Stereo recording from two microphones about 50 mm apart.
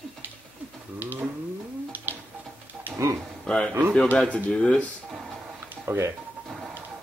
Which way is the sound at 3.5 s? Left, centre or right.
Centre.